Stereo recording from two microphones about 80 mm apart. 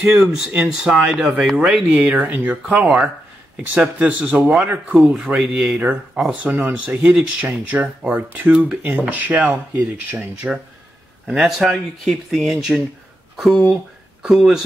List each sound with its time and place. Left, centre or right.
0.1 s speech: centre
11.2 s speech: centre
14.2 s speech: centre